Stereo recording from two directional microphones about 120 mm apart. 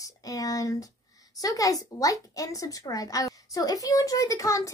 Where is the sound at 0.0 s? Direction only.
30° left (ahead or behind).